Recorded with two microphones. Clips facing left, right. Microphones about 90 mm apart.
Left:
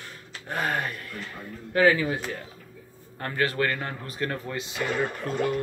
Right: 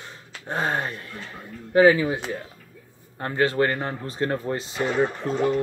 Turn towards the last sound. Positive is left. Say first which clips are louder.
# right 4 dB
turn(degrees=-25)  # may be behind; listen again after turning